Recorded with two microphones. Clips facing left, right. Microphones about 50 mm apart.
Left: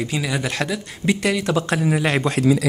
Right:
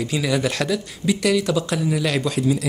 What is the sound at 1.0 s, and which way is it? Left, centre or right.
Speech, left.